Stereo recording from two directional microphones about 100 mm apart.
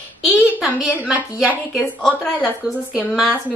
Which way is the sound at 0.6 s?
5° right (ahead or behind).